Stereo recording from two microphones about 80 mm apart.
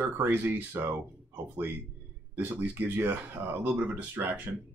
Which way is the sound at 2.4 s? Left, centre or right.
Right.